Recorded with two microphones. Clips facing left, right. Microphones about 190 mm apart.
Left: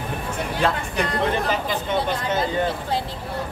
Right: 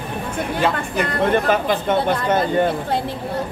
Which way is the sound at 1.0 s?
55° right (ahead or behind).